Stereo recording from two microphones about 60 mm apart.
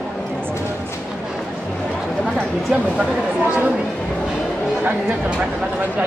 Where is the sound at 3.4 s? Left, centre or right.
Right.